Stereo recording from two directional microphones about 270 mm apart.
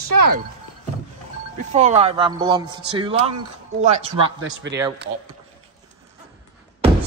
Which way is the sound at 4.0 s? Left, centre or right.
Right.